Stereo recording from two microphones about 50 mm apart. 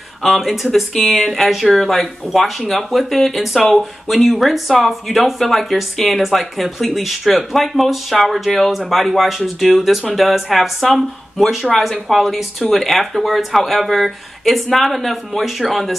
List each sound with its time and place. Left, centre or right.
0.2 s speech: centre